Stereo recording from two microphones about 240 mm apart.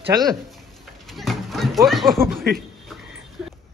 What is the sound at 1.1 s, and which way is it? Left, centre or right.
Speech, centre.